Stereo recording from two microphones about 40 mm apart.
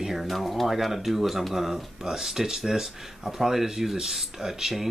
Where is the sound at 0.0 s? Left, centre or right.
Centre.